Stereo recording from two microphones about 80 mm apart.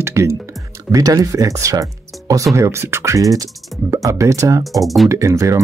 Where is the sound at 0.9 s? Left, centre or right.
Right.